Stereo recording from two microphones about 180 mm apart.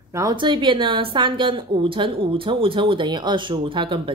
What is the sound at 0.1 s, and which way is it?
A woman's voice, 20° right (ahead or behind).